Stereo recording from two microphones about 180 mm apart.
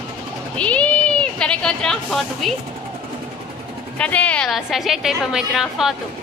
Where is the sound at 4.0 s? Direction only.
5° left (ahead or behind).